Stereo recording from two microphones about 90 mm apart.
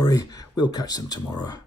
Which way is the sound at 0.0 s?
45° left (ahead or behind).